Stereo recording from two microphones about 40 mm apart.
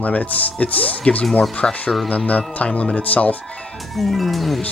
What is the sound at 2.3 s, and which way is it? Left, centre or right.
Speech, left.